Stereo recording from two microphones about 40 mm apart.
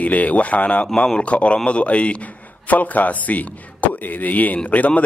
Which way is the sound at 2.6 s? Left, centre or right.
Left.